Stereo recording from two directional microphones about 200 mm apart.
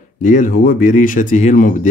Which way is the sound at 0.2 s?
40° left (ahead or behind).